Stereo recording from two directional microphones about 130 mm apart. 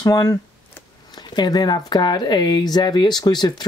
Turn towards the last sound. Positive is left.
turn(degrees=30)  # may be behind; listen again after turning